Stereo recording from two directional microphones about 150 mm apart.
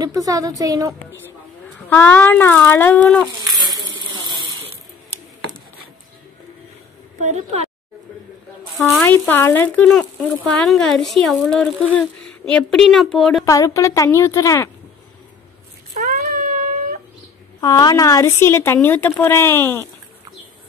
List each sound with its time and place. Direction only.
0.0 s a woman's voice: 25° right (ahead or behind)
1.9 s speech: 15° left (ahead or behind)
3.7 s a sound: 25° right (ahead or behind)
7.2 s a woman's voice: 50° right (ahead or behind)
9.3 s speech: 15° left (ahead or behind)
13.5 s a woman's voice: 20° left (ahead or behind)
16.0 s a sound: 75° right (ahead or behind)
17.6 s speech: 25° left (ahead or behind)